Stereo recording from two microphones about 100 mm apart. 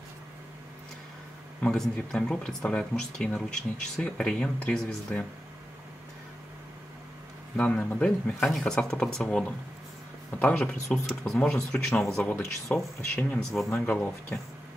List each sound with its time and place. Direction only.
1.6 s speech: 10° left (ahead or behind)
7.5 s speech: 10° left (ahead or behind)
13.1 s speech: 20° left (ahead or behind)
13.4 s speech: 5° left (ahead or behind)
13.7 s speech: 15° left (ahead or behind)